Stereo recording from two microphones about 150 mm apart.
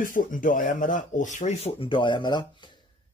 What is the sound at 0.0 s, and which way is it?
Speech, 65° left (ahead or behind).